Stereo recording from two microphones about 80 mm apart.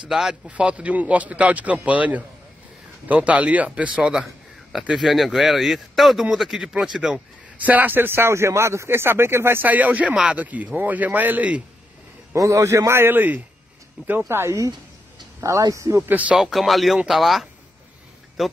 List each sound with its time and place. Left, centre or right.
0.1 s a man's voice: centre
7.6 s a man's voice: right
12.4 s a man's voice: right
16.1 s speech: centre
16.3 s speech: centre